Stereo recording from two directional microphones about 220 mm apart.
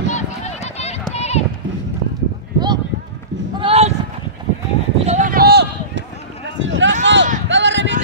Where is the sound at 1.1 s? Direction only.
30° left (ahead or behind).